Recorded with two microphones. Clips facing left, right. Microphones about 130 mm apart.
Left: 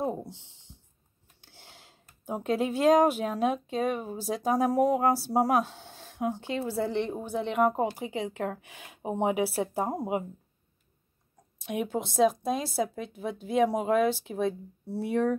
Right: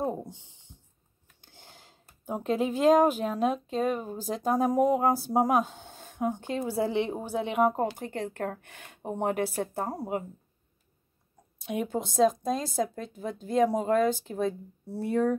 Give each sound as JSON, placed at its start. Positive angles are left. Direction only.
{"t": 1.4, "sound": "a sound", "side_deg": 5}
{"t": 2.2, "sound": "speech", "side_deg": 0}
{"t": 11.5, "sound": "speech", "side_deg": 0}